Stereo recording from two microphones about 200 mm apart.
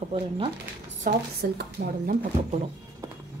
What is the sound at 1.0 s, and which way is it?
A woman's voice, 45° right (ahead or behind).